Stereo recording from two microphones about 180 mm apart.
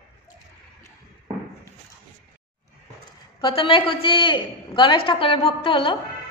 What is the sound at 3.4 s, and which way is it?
A man's voice, 30° left (ahead or behind).